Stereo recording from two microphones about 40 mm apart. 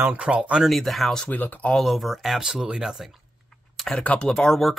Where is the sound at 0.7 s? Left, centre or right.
Centre.